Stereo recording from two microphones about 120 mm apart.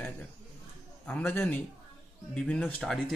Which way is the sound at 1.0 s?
15° left (ahead or behind).